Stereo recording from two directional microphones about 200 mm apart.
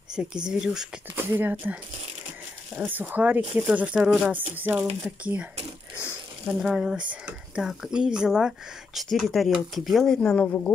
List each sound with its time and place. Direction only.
0.1 s speech: 5° right (ahead or behind)